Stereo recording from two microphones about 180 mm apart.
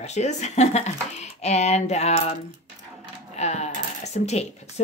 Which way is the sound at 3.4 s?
40° left (ahead or behind).